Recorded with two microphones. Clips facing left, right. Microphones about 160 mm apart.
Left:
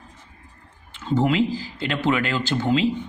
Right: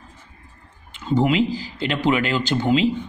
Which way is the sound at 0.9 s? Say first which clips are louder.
Right 1 dB; 15° right (ahead or behind).